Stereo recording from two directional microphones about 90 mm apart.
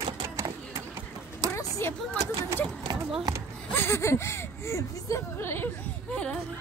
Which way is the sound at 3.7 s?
25° left (ahead or behind).